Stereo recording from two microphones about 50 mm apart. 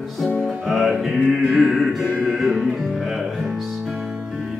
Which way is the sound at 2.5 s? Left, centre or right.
Centre.